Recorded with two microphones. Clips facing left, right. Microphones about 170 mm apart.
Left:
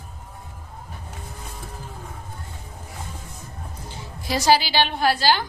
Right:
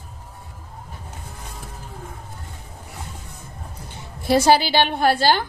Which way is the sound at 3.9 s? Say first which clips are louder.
Right 8 dB; 55° right (ahead or behind).